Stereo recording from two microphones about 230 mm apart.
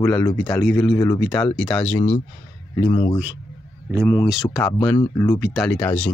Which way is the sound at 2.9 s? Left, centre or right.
Left.